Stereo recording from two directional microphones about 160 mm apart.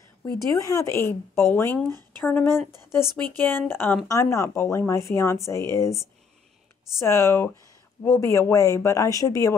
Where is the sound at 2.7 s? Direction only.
25° right (ahead or behind).